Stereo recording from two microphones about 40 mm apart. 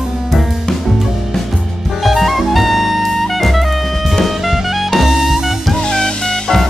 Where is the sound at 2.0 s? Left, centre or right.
Centre.